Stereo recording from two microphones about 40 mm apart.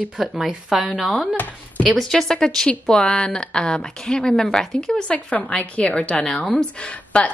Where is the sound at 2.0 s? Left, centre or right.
Centre.